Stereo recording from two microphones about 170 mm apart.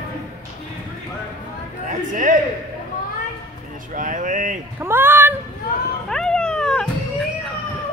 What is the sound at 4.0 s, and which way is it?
Speech, 50° right (ahead or behind).